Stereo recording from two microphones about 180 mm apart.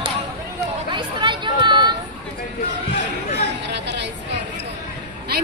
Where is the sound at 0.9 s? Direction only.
25° right (ahead or behind).